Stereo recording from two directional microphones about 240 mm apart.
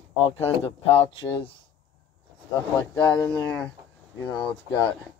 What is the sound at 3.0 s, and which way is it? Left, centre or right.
Speech, centre.